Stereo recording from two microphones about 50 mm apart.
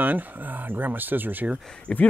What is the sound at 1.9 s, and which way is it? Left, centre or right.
Speech, left.